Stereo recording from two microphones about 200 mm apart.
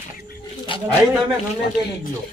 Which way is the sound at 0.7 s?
25° left (ahead or behind).